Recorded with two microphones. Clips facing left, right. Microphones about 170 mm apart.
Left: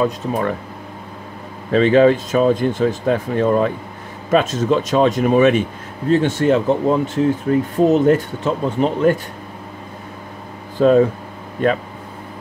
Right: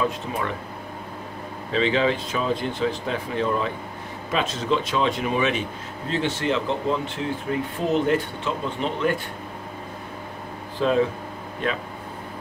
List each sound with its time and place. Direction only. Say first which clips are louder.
0.0 s speech: left 7 dB; 45° left (ahead or behind)
1.7 s speech: left 10 dB; 50° left (ahead or behind)
10.8 s speech: left 8 dB; 45° left (ahead or behind)